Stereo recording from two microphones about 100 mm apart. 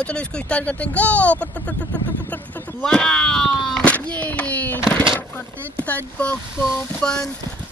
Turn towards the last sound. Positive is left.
turn(degrees=5)  # may be behind; listen again after turning